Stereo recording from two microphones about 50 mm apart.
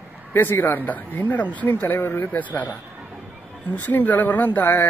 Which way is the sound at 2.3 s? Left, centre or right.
Left.